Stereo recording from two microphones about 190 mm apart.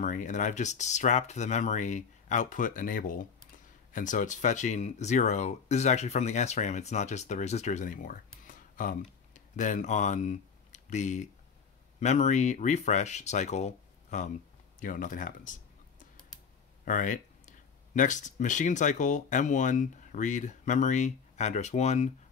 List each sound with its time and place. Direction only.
0.0 s speech: 40° left (ahead or behind)
16.8 s speech: 45° left (ahead or behind)